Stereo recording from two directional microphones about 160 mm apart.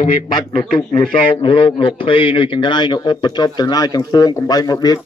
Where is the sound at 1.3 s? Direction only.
35° left (ahead or behind).